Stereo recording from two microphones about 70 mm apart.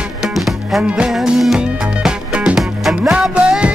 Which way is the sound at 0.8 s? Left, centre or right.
Centre.